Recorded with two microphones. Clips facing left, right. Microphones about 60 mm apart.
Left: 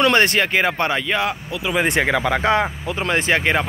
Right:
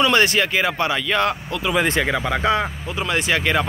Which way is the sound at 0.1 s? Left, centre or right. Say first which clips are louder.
Left 1 dB; left.